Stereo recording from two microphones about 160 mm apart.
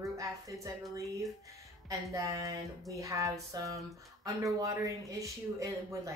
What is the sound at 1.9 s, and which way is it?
Speech, 20° right (ahead or behind).